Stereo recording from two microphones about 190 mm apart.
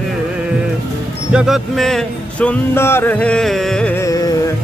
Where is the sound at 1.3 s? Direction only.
5° right (ahead or behind); by 4.5 s 15° left (ahead or behind).